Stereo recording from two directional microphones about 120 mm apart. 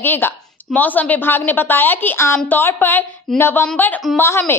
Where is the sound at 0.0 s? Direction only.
15° left (ahead or behind).